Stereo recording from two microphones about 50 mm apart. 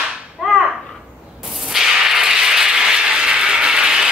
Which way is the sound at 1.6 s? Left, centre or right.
Centre.